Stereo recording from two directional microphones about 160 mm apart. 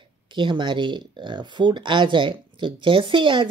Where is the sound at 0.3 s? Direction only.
30° right (ahead or behind).